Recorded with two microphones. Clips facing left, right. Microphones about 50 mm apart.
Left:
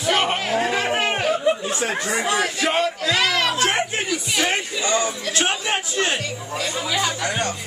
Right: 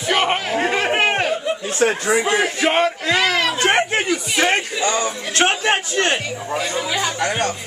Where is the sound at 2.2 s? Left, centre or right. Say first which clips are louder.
Right 3 dB; right.